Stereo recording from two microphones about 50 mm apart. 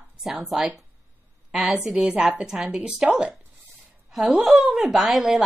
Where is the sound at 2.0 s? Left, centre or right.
Right.